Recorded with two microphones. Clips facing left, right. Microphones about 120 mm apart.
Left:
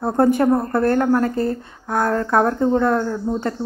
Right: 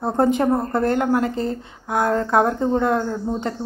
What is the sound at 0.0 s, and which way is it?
A woman's voice, 20° right (ahead or behind).